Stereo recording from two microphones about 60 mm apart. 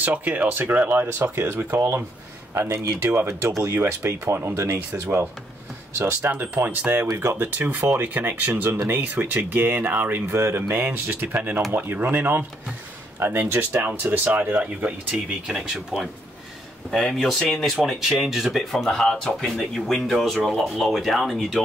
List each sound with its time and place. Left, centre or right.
0.0 s speech: right
1.8 s speech: right
6.3 s speech: right; by 16.1 s centre
16.9 s speech: centre
17.8 s speech: centre